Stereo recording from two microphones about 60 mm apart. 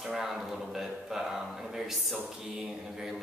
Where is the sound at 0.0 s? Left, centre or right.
Centre.